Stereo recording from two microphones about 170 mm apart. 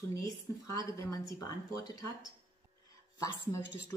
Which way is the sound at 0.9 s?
20° left (ahead or behind).